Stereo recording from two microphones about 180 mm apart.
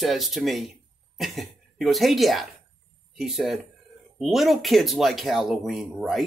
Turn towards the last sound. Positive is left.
turn(degrees=0)  # may be behind; listen again after turning